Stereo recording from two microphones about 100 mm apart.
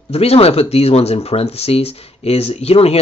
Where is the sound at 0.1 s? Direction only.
90° left.